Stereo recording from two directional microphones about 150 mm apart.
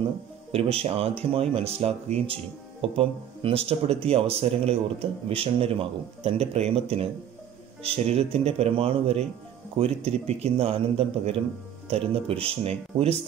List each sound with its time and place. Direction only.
0.5 s a man's voice: 40° right (ahead or behind)